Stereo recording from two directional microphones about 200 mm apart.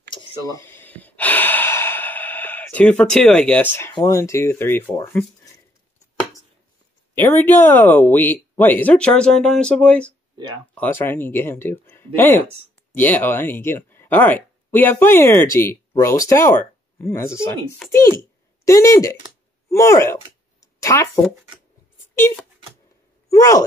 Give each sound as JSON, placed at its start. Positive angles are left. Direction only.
{"t": 0.1, "sound": "gasp", "side_deg": 20}
{"t": 3.9, "sound": "speech", "side_deg": 15}
{"t": 7.2, "sound": "speech", "side_deg": 10}
{"t": 10.3, "sound": "speech", "side_deg": -20}
{"t": 10.7, "sound": "speech", "side_deg": 10}
{"t": 20.6, "sound": "a sound", "side_deg": 15}
{"t": 22.1, "sound": "speech", "side_deg": 10}